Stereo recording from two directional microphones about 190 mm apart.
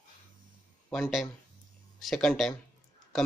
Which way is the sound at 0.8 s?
Centre (ahead or behind).